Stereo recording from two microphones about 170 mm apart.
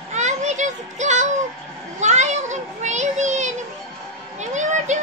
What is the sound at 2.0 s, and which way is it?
Child singing, 45° right (ahead or behind).